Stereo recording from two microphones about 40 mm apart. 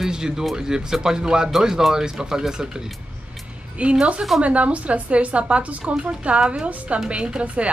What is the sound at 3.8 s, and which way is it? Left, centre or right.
A woman's voice, right.